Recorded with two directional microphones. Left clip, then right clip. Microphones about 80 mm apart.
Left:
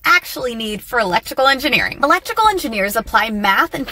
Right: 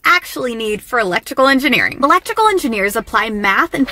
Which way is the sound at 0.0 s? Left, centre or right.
Right.